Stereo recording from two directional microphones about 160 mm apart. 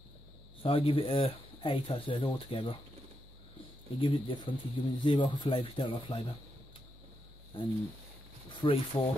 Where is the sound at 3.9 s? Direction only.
30° left (ahead or behind).